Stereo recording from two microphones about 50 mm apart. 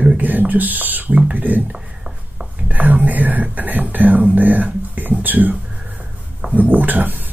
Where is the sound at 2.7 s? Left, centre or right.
Right.